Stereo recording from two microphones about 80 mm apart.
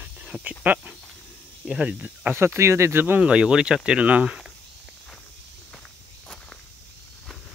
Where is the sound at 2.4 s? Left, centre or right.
Right; by 4.4 s centre.